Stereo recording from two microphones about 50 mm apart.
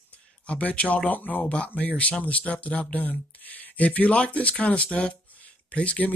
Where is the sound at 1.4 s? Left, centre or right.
Left.